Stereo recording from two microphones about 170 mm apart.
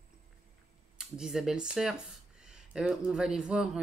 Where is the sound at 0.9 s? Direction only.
5° right (ahead or behind).